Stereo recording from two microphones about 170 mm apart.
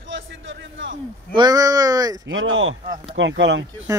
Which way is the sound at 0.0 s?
90° right.